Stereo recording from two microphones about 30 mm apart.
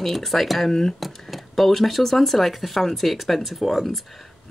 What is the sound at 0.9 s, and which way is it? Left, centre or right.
Speech, centre.